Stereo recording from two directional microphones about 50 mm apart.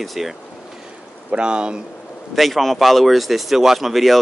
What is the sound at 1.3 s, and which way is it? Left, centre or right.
Speech, centre.